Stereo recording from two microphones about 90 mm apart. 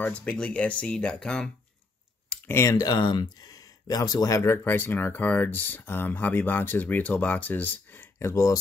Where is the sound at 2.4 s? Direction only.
30° left (ahead or behind).